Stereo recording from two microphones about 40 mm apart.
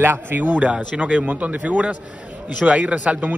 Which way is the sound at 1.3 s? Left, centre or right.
Right.